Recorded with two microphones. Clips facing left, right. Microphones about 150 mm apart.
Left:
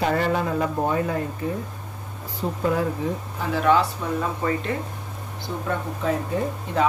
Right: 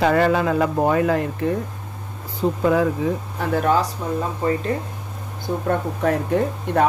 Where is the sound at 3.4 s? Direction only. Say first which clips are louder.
Right 4 dB; 65° right (ahead or behind).